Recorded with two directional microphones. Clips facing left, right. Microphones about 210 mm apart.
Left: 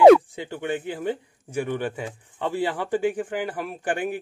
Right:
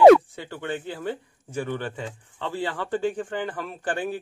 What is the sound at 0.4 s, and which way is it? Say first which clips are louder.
A man's voice: left 3 dB; 15° left (ahead or behind).